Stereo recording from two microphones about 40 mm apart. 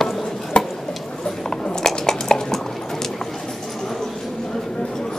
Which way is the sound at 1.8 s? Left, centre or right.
Centre.